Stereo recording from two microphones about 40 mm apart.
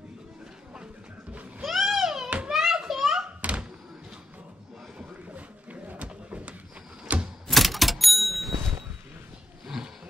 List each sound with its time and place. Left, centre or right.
1.7 s a sound: centre
2.2 s children playing: right
2.5 s children playing: centre
3.3 s thunk: right
5.3 s a sound: right
7.4 s vehicle: centre